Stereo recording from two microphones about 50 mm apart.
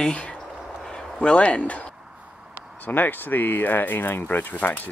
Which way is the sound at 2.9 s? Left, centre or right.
Left.